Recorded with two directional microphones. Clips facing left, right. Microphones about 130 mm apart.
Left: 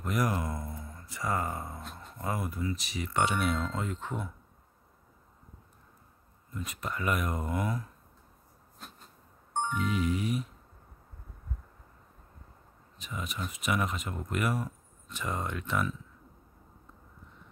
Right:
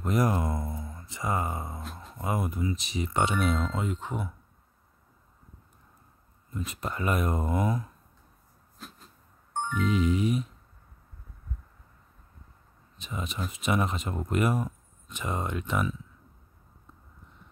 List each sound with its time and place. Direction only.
0.0 s speech: 25° right (ahead or behind)
6.5 s speech: 25° right (ahead or behind)
8.7 s a sound: centre (ahead or behind)
9.5 s music: 20° left (ahead or behind)
9.8 s speech: 20° right (ahead or behind)
12.9 s speech: 25° right (ahead or behind)